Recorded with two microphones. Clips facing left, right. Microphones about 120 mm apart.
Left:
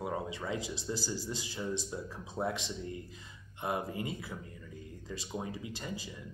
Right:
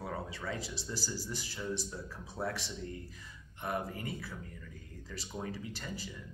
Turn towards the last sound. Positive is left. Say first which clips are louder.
# left 2 dB
turn(degrees=15)  # may be behind; listen again after turning